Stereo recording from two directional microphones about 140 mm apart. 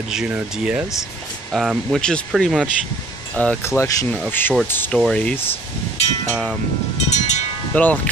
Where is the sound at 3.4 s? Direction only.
15° left (ahead or behind).